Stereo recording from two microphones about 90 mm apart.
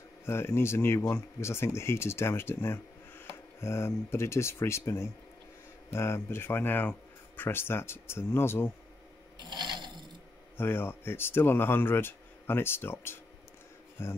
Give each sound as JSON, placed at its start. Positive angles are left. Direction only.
{"t": 0.2, "sound": "speech", "side_deg": 25}
{"t": 9.4, "sound": "filing", "side_deg": -60}
{"t": 10.6, "sound": "speech", "side_deg": 25}